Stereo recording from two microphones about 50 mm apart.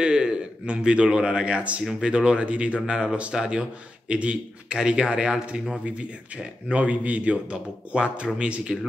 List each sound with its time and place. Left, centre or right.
0.0 s a man's voice: centre